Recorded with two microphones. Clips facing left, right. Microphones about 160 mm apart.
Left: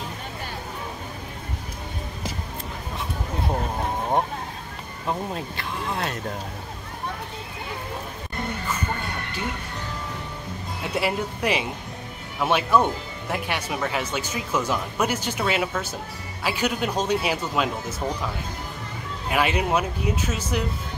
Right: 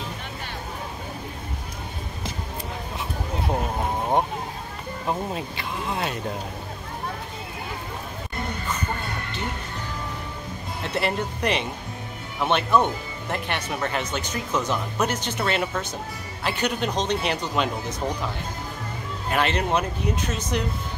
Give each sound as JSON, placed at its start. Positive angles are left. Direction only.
{"t": 5.0, "sound": "speech", "side_deg": -5}
{"t": 10.8, "sound": "speech", "side_deg": 10}
{"t": 19.3, "sound": "speech", "side_deg": 10}